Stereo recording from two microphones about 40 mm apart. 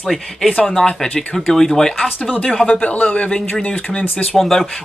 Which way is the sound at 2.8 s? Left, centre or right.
Left.